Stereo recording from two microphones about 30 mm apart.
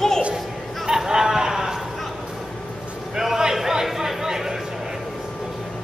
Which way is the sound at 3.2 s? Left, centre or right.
Centre.